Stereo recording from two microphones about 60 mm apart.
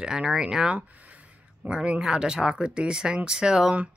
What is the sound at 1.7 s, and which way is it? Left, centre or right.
Speech, centre.